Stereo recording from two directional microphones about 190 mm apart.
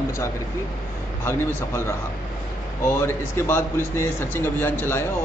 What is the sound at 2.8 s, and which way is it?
Speech, 15° left (ahead or behind).